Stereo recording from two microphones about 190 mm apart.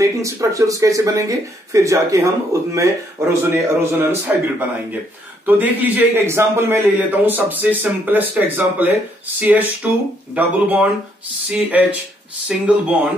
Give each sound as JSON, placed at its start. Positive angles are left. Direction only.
{"t": 0.0, "sound": "speech", "side_deg": -15}